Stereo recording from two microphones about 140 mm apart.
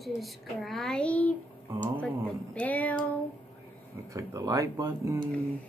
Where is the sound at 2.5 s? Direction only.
10° left (ahead or behind).